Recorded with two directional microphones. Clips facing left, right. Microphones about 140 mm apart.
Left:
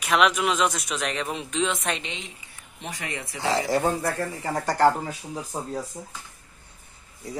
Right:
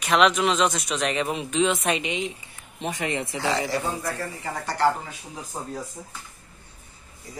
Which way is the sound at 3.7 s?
50° left (ahead or behind).